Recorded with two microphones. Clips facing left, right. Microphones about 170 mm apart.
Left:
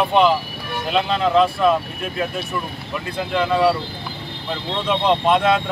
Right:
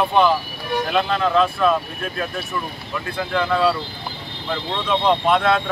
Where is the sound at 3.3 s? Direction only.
15° left (ahead or behind).